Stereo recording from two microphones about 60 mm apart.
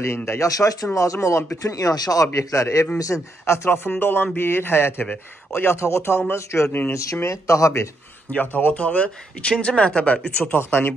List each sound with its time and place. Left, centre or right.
0.0 s speech: left
0.5 s speech: left
0.9 s speech: left
1.6 s speech: left
2.3 s speech: left
3.1 s speech: left
3.4 s a man's voice: left
8.3 s speech: left
10.4 s a man's voice: left